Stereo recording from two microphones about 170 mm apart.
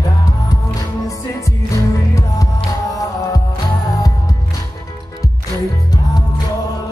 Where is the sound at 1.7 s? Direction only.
20° left (ahead or behind).